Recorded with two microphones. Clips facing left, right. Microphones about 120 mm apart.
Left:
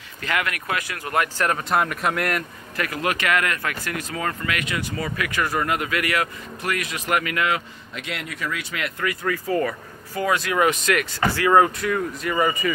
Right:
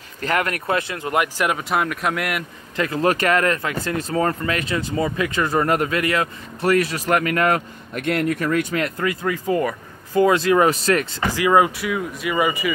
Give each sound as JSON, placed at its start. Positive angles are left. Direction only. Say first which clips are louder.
{"t": 0.2, "sound": "speech", "louder": "right 4 dB", "side_deg": -40}
{"t": 2.7, "sound": "speech", "louder": "right 6 dB", "side_deg": -25}
{"t": 11.2, "sound": "speech", "louder": "even", "side_deg": -15}